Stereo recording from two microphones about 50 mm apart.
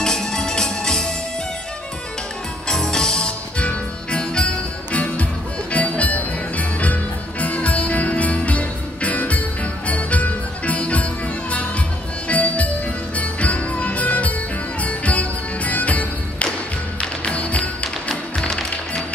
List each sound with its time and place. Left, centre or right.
0.0 s music: centre
2.7 s music: centre; by 11.1 s left
12.3 s music: left